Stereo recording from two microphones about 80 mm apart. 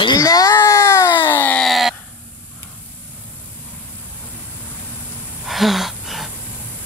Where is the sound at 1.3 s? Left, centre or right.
Left.